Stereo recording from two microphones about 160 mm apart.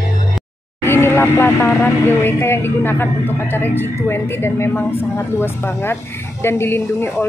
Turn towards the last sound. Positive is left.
turn(degrees=15)  # may be behind; listen again after turning